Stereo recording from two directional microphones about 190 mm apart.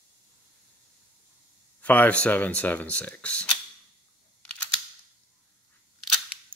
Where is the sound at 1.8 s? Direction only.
5° left (ahead or behind).